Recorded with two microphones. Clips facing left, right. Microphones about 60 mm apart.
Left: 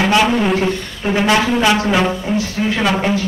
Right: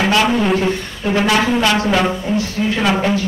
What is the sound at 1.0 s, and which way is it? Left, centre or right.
Speech, centre.